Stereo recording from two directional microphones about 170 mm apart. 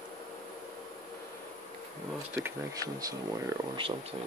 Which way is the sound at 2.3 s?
20° right (ahead or behind).